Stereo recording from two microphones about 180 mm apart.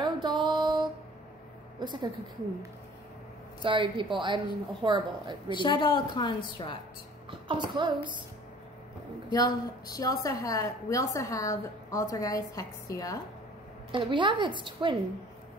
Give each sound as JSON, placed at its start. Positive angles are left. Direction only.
{"t": 0.0, "sound": "music", "side_deg": -25}
{"t": 0.6, "sound": "a sound", "side_deg": -25}
{"t": 1.8, "sound": "speech", "side_deg": -25}
{"t": 3.6, "sound": "speech", "side_deg": -25}
{"t": 5.5, "sound": "a woman's voice", "side_deg": 25}
{"t": 7.2, "sound": "a child's voice", "side_deg": -25}
{"t": 9.3, "sound": "a woman's voice", "side_deg": 20}
{"t": 13.9, "sound": "speech", "side_deg": -25}